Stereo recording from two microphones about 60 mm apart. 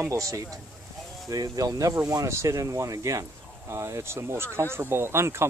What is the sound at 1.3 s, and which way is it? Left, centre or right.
Speech, right.